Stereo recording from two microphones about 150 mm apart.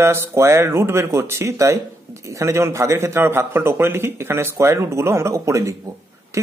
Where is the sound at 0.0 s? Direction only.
15° right (ahead or behind).